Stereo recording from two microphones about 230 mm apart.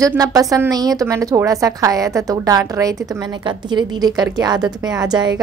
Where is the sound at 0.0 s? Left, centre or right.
Centre.